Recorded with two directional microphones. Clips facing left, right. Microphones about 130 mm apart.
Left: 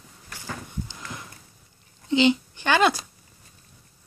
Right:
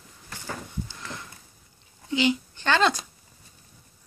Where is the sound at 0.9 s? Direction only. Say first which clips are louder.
Even; 15° left (ahead or behind).